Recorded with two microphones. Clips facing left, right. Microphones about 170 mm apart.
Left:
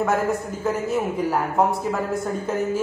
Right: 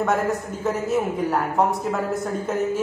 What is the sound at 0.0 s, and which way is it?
A man's voice, centre (ahead or behind).